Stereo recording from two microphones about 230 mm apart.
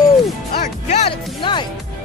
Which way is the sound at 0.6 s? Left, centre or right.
Left.